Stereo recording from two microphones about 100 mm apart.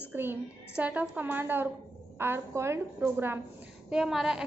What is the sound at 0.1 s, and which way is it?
A woman's voice, 20° right (ahead or behind).